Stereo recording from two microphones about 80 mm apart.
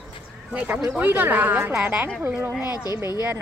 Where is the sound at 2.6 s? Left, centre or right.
Left.